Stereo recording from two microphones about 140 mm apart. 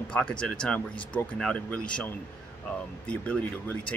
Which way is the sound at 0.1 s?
5° left (ahead or behind).